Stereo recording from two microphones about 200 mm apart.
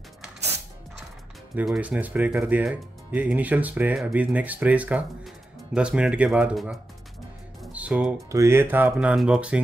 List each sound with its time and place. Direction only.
1.5 s speech: 10° right (ahead or behind)